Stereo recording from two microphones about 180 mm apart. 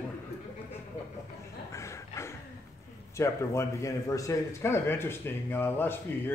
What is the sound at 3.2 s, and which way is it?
Speech, 15° left (ahead or behind).